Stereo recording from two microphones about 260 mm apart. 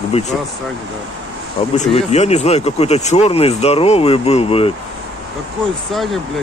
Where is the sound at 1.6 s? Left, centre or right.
Left.